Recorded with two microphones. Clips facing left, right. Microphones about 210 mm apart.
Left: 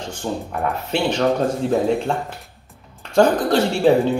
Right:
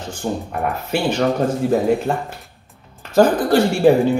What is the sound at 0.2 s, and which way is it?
Speech, 15° right (ahead or behind).